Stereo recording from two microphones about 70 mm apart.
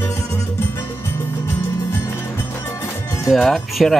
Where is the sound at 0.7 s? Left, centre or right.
Left.